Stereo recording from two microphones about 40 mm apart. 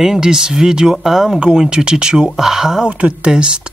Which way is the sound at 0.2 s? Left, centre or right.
Centre.